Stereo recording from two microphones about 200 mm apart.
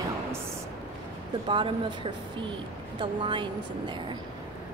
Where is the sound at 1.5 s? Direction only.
25° right (ahead or behind).